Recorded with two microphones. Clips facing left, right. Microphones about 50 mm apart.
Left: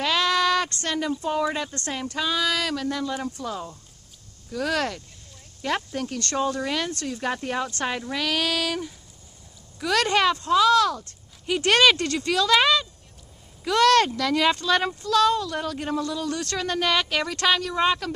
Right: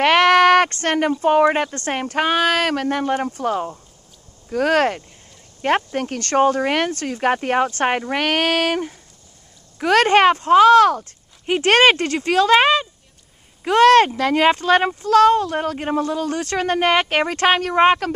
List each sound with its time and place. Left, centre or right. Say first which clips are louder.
0.0 s a sound: right 9 dB; right
1.2 s speech: right 10 dB; right
12.3 s speech: right 6 dB; right